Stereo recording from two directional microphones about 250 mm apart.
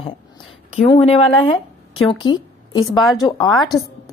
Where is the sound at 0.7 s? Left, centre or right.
Left.